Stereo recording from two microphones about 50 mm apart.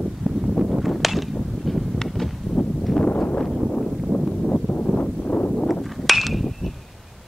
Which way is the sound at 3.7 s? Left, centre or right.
Centre.